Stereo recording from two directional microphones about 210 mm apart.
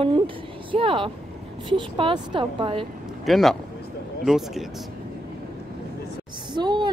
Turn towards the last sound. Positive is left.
turn(degrees=-20)  # may be behind; listen again after turning